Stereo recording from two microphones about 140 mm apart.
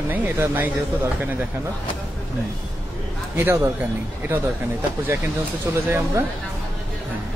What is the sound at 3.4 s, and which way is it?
Speech, 20° right (ahead or behind).